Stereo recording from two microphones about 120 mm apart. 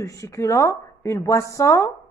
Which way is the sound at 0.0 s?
25° left (ahead or behind).